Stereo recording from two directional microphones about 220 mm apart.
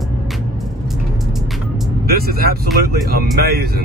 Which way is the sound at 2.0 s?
45° right (ahead or behind).